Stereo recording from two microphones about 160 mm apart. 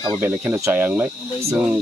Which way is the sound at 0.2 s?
10° right (ahead or behind).